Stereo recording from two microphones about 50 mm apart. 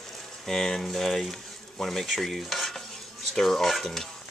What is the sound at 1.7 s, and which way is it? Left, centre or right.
Stir, centre.